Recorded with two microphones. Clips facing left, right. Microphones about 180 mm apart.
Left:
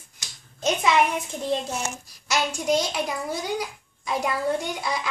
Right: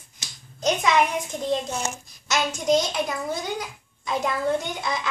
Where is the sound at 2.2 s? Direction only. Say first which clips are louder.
Right 1 dB; 10° left (ahead or behind).